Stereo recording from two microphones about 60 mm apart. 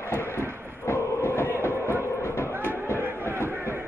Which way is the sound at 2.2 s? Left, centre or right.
Left.